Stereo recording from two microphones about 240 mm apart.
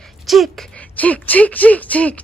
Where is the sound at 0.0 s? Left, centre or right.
Centre.